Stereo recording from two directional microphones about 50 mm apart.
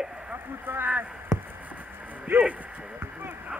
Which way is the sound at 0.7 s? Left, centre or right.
Right.